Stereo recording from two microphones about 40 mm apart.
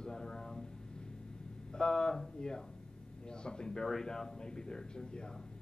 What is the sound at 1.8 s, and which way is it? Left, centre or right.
A man's voice, centre.